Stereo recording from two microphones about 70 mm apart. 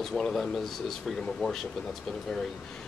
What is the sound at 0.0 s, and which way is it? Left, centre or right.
Speech, centre.